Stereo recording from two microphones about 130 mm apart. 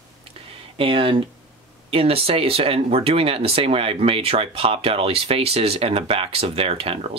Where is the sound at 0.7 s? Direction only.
45° right (ahead or behind).